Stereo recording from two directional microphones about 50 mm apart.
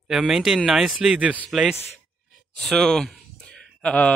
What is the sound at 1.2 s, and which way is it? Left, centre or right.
Speech, right.